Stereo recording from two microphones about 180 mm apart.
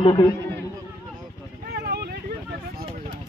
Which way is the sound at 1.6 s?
65° right (ahead or behind).